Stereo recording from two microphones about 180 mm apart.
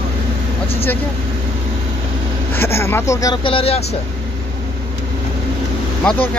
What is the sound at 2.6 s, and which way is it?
Speech, 15° left (ahead or behind).